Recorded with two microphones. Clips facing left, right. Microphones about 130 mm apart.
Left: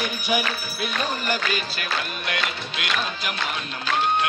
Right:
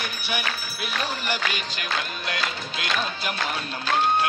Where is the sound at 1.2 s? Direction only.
15° right (ahead or behind).